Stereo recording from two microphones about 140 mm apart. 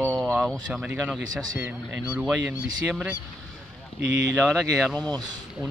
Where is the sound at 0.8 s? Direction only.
10° right (ahead or behind).